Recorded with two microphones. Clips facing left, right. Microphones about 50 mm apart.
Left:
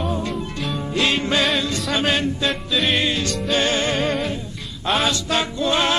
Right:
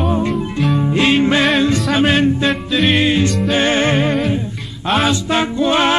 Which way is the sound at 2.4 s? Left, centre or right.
Centre.